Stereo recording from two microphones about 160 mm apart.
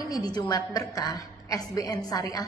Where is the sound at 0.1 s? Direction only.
25° left (ahead or behind).